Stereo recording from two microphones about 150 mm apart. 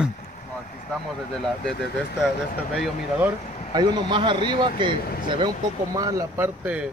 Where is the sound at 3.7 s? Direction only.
30° right (ahead or behind).